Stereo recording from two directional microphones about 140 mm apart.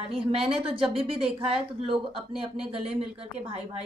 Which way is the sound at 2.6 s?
45° right (ahead or behind).